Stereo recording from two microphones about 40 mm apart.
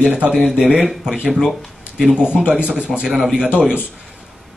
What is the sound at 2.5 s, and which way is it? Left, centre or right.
Speech, right.